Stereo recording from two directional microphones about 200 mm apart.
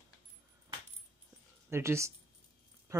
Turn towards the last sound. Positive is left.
turn(degrees=-15)  # may be behind; listen again after turning